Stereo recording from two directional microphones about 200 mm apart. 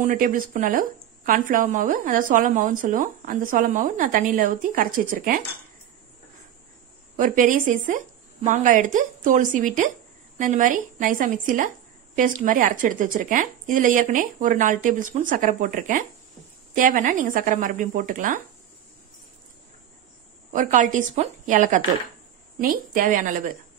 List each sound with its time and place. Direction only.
0.0 s speech: 40° right (ahead or behind)
7.2 s a woman's voice: 40° right (ahead or behind)
20.5 s a woman's voice: 40° right (ahead or behind)